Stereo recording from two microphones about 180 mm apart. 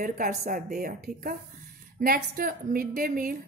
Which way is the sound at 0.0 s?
50° right (ahead or behind).